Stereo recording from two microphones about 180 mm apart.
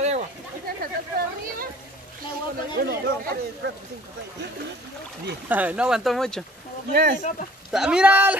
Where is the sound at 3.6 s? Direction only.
75° right (ahead or behind).